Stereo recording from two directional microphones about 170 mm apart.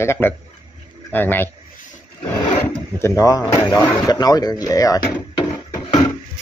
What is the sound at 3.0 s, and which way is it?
Speech, 20° left (ahead or behind).